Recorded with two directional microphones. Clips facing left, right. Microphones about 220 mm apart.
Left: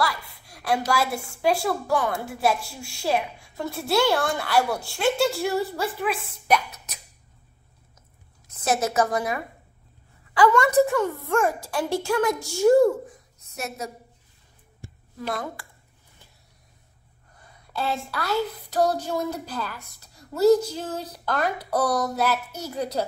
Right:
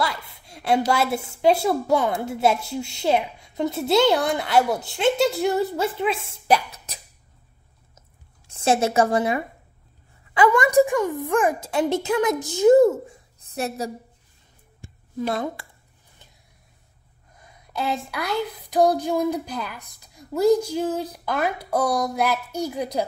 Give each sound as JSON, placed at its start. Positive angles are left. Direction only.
{"t": 0.0, "sound": "a woman's voice", "side_deg": -25}
{"t": 8.5, "sound": "a woman's voice", "side_deg": -30}
{"t": 15.1, "sound": "a woman's voice", "side_deg": -20}
{"t": 17.4, "sound": "a woman's voice", "side_deg": -15}